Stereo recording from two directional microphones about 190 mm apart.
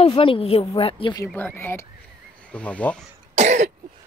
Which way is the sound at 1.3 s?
10° left (ahead or behind).